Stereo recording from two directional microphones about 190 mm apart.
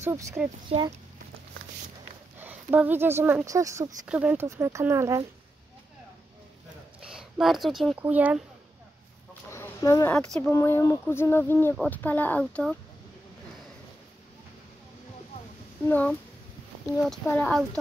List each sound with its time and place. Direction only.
0.0 s speech: 15° right (ahead or behind)
0.7 s speech: 25° right (ahead or behind)
2.4 s speech: 10° right (ahead or behind)
4.0 s speech: 5° right (ahead or behind)
7.0 s speech: 5° right (ahead or behind)
9.3 s a sound: 15° left (ahead or behind)
10.1 s speech: 5° left (ahead or behind)
10.5 s a sound: 15° left (ahead or behind)
15.9 s a sound: 10° left (ahead or behind)
16.9 s speech: 5° left (ahead or behind)